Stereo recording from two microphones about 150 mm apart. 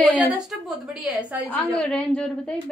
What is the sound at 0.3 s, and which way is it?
A woman's voice, 5° right (ahead or behind).